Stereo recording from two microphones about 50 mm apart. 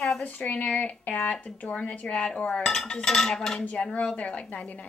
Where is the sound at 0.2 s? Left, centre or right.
Left.